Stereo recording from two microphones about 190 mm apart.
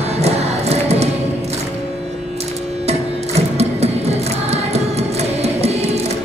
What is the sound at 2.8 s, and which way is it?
Music, 35° right (ahead or behind).